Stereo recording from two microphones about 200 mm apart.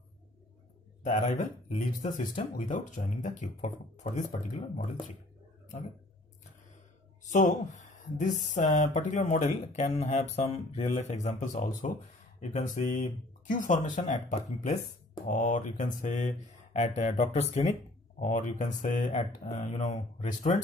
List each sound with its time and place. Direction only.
1.0 s speech: 40° left (ahead or behind)
7.2 s speech: 40° left (ahead or behind)